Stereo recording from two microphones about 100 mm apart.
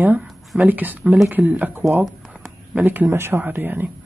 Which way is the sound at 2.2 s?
5° right (ahead or behind).